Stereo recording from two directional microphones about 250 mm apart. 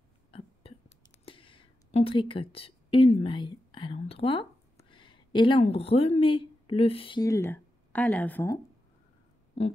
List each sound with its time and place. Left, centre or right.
0.7 s whispering: left
1.2 s speech: left
9.6 s a sound: left